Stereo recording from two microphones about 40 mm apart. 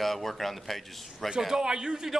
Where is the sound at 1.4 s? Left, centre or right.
Centre.